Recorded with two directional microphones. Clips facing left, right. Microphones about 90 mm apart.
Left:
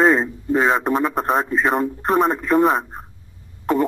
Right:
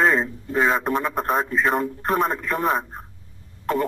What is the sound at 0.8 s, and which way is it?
Speech, centre (ahead or behind).